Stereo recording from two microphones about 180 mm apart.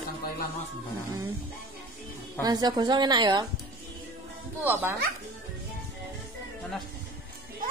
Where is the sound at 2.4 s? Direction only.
20° right (ahead or behind).